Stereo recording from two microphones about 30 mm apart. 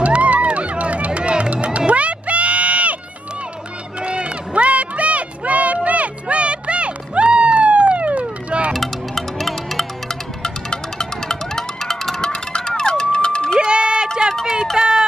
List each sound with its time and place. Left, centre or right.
0.0 s music: right
1.9 s bleat: right
4.0 s run: right
5.9 s music: right
8.7 s music: centre
10.4 s music: centre
12.2 s music: left
13.6 s a sound: right
14.4 s run: centre
14.8 s a sound: right